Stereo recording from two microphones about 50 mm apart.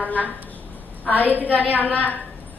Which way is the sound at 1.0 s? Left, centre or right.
Left.